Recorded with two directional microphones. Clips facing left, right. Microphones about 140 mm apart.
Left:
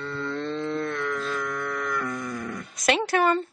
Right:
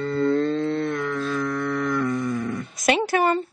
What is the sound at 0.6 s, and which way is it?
Cattle, 30° right (ahead or behind).